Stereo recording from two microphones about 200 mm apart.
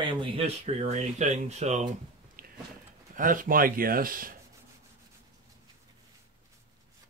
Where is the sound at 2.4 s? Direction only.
45° right (ahead or behind).